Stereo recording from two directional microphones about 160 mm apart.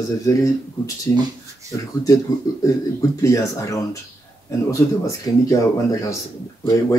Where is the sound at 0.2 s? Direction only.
20° left (ahead or behind).